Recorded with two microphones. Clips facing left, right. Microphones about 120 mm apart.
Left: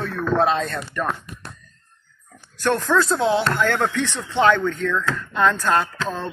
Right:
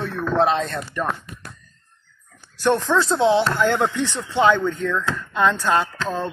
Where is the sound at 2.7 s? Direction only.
Centre (ahead or behind).